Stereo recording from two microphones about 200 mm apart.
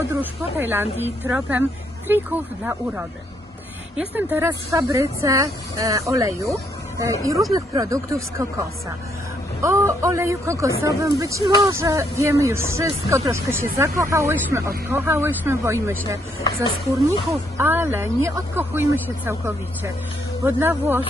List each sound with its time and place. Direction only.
0.1 s speech: 10° right (ahead or behind)
17.6 s speech: 10° right (ahead or behind)